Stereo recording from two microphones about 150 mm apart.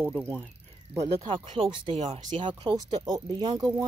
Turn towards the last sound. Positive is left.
turn(degrees=-25)  # may be behind; listen again after turning